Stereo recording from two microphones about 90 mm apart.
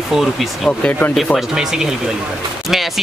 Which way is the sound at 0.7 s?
15° left (ahead or behind).